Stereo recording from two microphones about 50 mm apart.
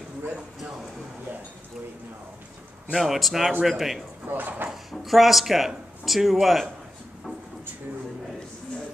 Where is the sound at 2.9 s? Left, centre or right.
Centre.